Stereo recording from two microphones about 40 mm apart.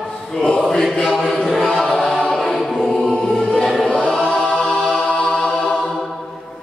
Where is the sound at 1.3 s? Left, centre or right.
Centre.